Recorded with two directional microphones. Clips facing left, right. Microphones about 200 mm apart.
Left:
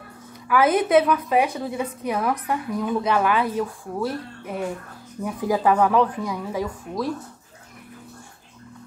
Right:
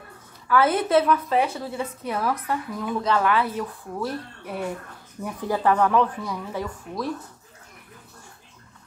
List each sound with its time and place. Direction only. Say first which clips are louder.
0.5 s a woman's voice: left 2 dB; 15° left (ahead or behind)
4.5 s speech: left 2 dB; 5° right (ahead or behind)
5.2 s a woman's voice: left 2 dB; 10° left (ahead or behind)